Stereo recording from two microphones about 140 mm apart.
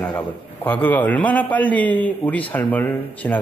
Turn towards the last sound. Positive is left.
turn(degrees=10)  # may be behind; listen again after turning